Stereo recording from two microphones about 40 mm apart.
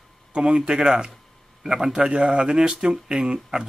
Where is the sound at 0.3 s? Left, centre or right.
Right.